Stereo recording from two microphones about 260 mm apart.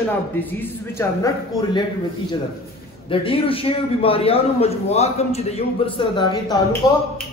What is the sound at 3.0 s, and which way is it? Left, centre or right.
A man's voice, left.